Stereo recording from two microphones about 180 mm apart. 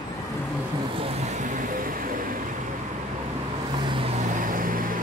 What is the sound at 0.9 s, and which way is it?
Vehicle, 35° right (ahead or behind).